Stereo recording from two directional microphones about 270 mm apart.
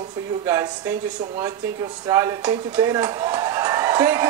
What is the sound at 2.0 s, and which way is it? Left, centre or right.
A man's voice, centre.